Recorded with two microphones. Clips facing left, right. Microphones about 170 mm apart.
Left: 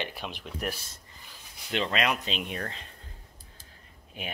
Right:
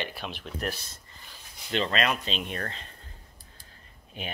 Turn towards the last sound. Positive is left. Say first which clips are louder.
# right 1 dB
turn(degrees=5)  # may be behind; listen again after turning